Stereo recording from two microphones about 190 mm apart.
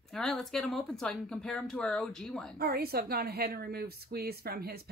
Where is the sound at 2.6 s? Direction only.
55° right (ahead or behind).